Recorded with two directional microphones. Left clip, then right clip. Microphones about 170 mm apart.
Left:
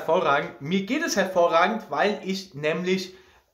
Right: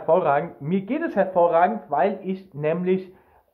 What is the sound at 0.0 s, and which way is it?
Speech, 15° left (ahead or behind).